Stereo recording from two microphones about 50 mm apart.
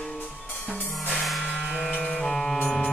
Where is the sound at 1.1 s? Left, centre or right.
Centre.